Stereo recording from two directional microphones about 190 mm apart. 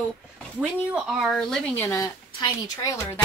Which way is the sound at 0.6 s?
Centre (ahead or behind).